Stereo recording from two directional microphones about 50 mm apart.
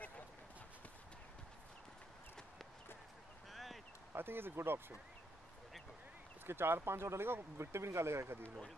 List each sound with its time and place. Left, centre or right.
3.5 s a sound: centre
4.1 s speech: right
6.4 s speech: right